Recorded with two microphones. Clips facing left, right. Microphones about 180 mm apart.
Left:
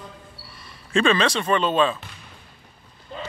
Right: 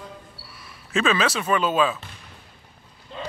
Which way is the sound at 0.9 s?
5° right (ahead or behind).